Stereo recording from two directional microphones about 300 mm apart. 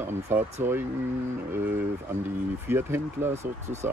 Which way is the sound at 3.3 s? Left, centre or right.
Right.